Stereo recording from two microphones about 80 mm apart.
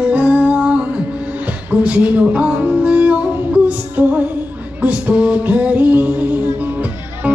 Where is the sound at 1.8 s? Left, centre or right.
Centre.